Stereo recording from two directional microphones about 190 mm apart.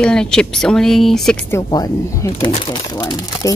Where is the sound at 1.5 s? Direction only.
20° left (ahead or behind).